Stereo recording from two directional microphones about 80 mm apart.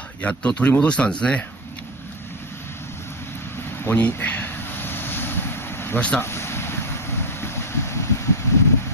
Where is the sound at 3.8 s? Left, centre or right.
Left.